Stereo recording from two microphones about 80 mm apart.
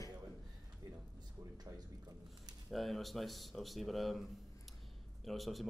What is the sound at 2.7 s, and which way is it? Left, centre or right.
Speech, centre.